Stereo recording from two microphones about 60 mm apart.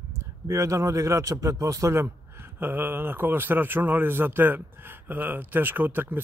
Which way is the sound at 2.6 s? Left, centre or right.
Right.